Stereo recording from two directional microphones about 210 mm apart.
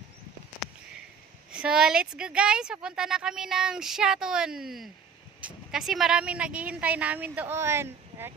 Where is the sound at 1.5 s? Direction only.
5° right (ahead or behind).